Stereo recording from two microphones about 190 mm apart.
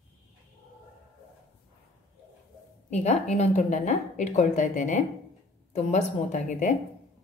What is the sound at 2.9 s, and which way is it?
A woman's voice, 35° left (ahead or behind).